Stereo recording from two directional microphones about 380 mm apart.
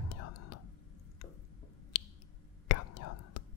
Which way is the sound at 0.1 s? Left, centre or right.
Left.